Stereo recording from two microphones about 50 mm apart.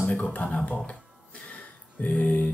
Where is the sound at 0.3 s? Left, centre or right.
Left.